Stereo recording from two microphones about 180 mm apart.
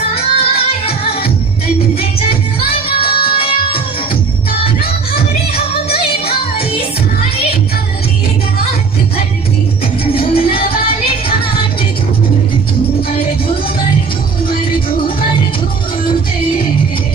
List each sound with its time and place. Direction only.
0.1 s music: 35° left (ahead or behind)
3.0 s music: 30° left (ahead or behind)
10.1 s music: 30° left (ahead or behind)